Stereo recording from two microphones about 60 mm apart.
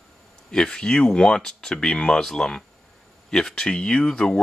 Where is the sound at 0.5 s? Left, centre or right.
Centre.